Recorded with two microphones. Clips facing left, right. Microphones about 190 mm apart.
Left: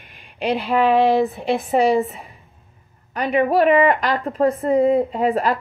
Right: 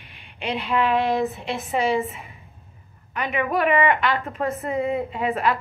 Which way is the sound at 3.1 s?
35° left (ahead or behind).